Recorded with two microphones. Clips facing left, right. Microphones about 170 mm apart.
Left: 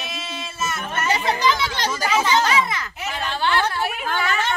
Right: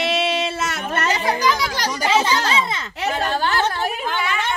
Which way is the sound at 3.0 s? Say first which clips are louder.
Right 4 dB; 50° right (ahead or behind).